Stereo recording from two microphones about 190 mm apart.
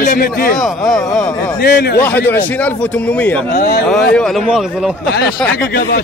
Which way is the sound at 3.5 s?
55° left (ahead or behind).